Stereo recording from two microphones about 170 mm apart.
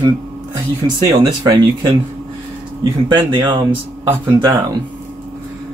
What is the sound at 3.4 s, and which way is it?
Speech, 30° right (ahead or behind).